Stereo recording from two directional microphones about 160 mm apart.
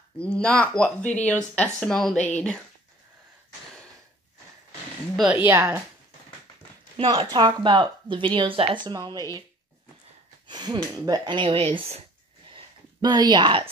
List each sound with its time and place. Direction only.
0.4 s speech: 10° left (ahead or behind)
5.1 s speech: 5° right (ahead or behind)
7.2 s speech: 25° right (ahead or behind)
10.4 s speech: 25° right (ahead or behind)
12.4 s a sound: 30° right (ahead or behind)